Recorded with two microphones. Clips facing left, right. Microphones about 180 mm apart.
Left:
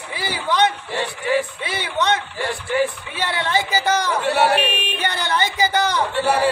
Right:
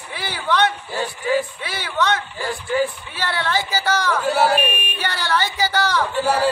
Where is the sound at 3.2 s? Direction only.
20° left (ahead or behind).